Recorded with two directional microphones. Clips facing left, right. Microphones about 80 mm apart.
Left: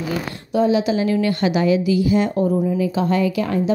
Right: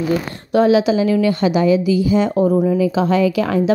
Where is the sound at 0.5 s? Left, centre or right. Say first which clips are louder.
Right 4 dB; right.